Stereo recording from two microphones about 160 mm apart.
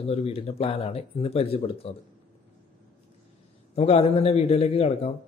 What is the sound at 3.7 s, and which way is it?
Speech, 40° left (ahead or behind).